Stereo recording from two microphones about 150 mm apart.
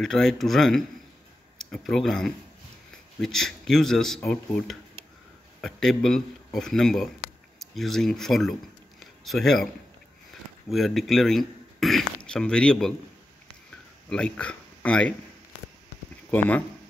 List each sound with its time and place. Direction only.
0.0 s speech: centre (ahead or behind)
9.0 s a sound: centre (ahead or behind)
10.7 s a man's voice: centre (ahead or behind)
14.0 s speech: 5° left (ahead or behind)
16.3 s speech: 10° left (ahead or behind)